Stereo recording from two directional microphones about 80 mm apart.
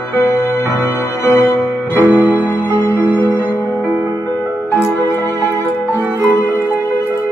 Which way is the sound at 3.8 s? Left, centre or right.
Right.